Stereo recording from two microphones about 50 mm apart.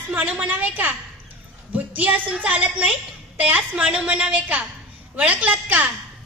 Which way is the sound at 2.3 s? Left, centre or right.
Right.